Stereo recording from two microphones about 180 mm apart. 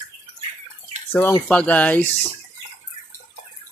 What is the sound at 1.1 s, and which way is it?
Speech, 10° left (ahead or behind).